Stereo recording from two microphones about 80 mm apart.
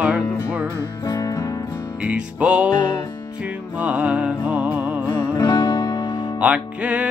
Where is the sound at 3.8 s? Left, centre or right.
Centre.